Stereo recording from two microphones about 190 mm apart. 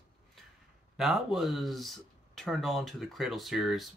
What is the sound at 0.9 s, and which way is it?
Speech, centre (ahead or behind).